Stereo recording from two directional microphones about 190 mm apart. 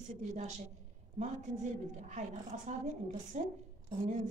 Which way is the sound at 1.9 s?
40° right (ahead or behind).